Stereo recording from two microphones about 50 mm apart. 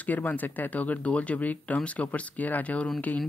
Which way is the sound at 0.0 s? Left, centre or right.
Left.